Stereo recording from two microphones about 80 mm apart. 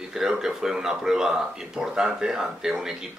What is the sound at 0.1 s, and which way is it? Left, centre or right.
A man's voice, centre.